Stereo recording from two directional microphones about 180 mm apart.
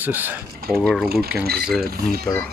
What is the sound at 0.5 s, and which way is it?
Mechanisms, 55° right (ahead or behind).